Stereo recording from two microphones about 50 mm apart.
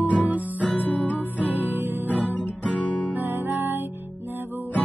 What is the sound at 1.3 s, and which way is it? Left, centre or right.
Music, right.